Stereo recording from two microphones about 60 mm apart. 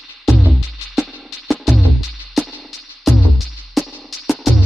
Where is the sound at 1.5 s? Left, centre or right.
Centre.